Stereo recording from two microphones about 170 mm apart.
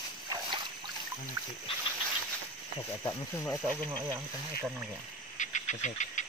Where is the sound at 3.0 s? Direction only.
15° left (ahead or behind).